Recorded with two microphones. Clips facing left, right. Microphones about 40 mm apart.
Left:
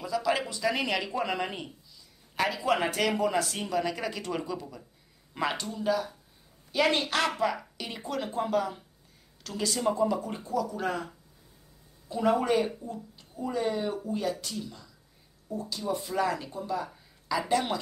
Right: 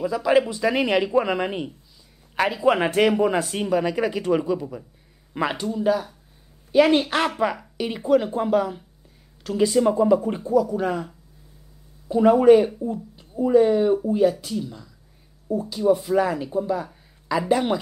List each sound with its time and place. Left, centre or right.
0.0 s speech: right
10.5 s speech: centre
12.3 s speech: centre